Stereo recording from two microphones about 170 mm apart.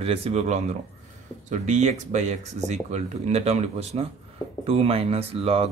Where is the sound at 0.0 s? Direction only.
35° right (ahead or behind).